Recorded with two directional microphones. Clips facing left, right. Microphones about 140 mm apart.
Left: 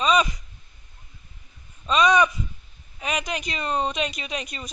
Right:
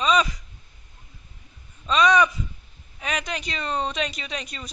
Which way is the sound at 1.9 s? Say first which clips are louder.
Even; 10° left (ahead or behind).